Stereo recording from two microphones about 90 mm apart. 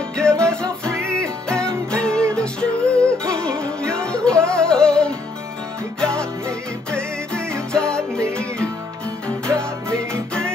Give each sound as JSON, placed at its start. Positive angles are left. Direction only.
{"t": 0.2, "sound": "music", "side_deg": 10}
{"t": 0.9, "sound": "music", "side_deg": -30}
{"t": 1.9, "sound": "music", "side_deg": 10}
{"t": 7.7, "sound": "music", "side_deg": 10}